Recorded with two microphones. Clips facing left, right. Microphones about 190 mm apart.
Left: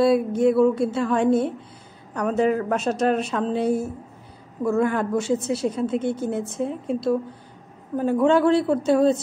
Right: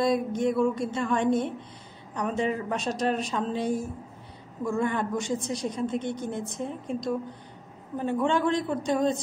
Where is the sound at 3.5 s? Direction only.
35° left (ahead or behind).